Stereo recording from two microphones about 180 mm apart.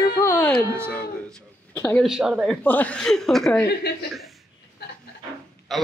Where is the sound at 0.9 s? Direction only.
5° left (ahead or behind).